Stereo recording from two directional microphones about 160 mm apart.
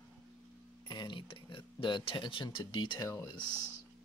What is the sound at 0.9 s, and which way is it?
Speech, 30° left (ahead or behind).